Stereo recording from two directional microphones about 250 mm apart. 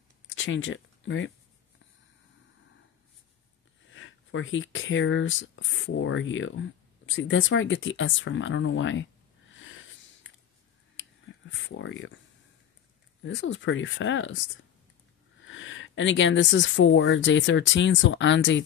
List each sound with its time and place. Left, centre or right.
0.3 s speech: left
3.9 s speech: left
9.5 s wheeze: left
11.0 s a sound: left
13.2 s speech: left
15.4 s speech: left